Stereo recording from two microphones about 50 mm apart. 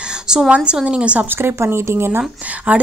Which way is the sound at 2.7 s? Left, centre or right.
Right.